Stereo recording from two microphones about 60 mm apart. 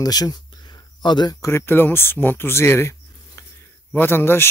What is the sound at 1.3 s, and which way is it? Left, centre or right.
Speech, left.